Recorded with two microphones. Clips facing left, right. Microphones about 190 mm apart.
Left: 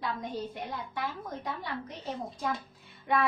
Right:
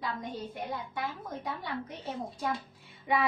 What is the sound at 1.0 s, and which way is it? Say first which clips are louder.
A woman's voice: left 1 dB; centre (ahead or behind).